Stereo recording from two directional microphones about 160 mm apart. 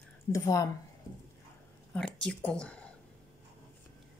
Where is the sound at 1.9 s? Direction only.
5° left (ahead or behind).